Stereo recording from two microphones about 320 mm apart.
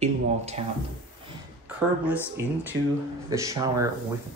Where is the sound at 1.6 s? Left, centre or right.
Centre.